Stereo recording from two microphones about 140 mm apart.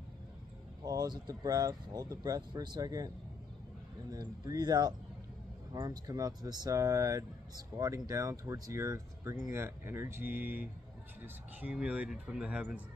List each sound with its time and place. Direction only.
0.8 s speech: 30° right (ahead or behind)
4.1 s speech: 30° right (ahead or behind); by 12.8 s 10° right (ahead or behind)